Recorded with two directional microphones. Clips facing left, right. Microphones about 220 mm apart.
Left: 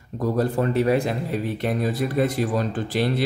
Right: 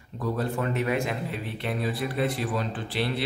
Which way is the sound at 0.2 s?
40° left (ahead or behind).